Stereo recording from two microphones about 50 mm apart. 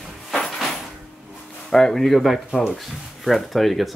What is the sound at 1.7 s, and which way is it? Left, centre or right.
Speech, centre.